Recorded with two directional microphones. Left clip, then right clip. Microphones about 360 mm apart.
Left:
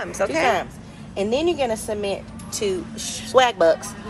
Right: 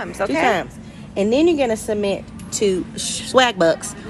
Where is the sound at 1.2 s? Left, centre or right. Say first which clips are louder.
Right 5 dB; right.